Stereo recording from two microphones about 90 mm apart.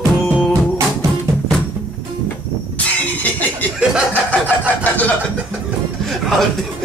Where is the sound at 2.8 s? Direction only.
15° left (ahead or behind).